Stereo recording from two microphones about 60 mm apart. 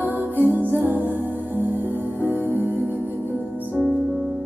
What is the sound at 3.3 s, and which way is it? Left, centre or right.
Music, left.